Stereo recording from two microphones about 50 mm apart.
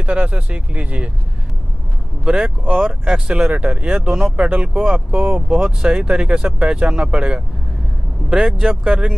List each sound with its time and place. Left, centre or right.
0.0 s speech: right
2.2 s speech: centre
8.5 s speech: centre
8.8 s speech: right